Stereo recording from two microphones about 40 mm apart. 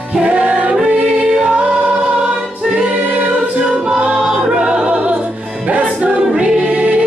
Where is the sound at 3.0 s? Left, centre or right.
Right.